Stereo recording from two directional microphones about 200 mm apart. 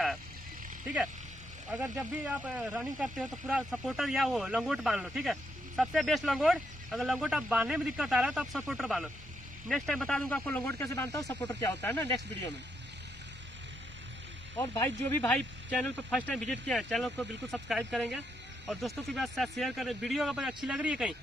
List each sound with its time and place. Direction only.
1.7 s speech: 5° right (ahead or behind); by 12.5 s 10° left (ahead or behind)
14.6 s speech: 15° left (ahead or behind); by 21.1 s 5° right (ahead or behind)